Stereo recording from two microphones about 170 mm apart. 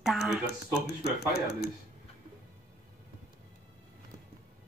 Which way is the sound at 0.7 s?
70° left (ahead or behind).